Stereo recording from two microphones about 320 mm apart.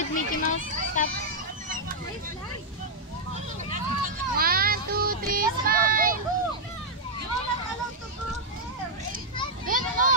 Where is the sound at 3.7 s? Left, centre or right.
Right.